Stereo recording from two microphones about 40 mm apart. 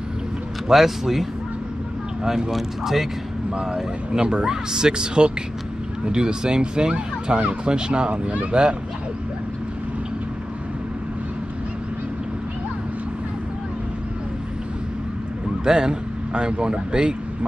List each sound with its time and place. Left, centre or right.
0.7 s speech: centre
2.2 s speech: centre
3.6 s speech: centre; by 8.5 s right
15.6 s speech: centre